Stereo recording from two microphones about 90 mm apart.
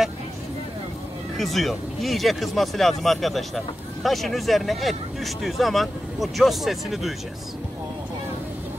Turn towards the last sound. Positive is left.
turn(degrees=0)  # may be behind; listen again after turning